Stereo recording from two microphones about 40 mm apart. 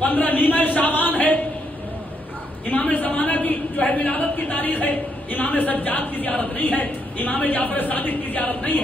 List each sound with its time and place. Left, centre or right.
0.0 s speech: left
2.6 s a woman's voice: left